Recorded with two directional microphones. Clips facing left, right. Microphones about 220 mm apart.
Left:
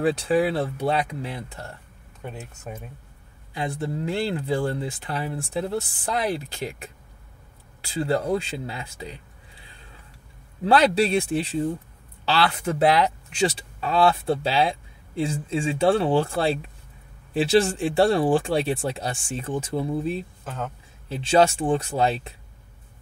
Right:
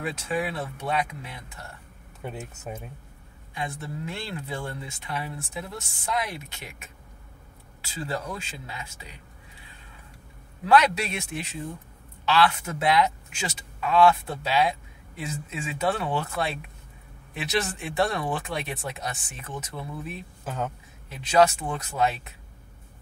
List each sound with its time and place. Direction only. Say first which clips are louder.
0.0 s speech: left 8 dB; 35° left (ahead or behind)
2.2 s speech: right 1 dB; centre (ahead or behind)
3.5 s speech: left 6 dB; 30° left (ahead or behind)
8.0 s speech: left 9 dB; 35° left (ahead or behind)
10.6 s speech: left 3 dB; 30° left (ahead or behind)
20.4 s speech: right 1 dB; 5° right (ahead or behind)
21.1 s speech: left 2 dB; 30° left (ahead or behind)